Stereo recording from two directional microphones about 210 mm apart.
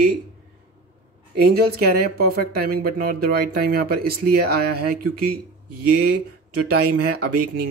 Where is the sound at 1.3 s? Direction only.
45° right (ahead or behind).